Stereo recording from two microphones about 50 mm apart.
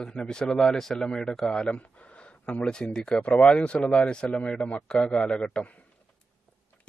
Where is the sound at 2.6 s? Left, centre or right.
Centre.